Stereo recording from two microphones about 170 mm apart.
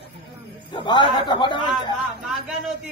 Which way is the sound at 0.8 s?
25° left (ahead or behind).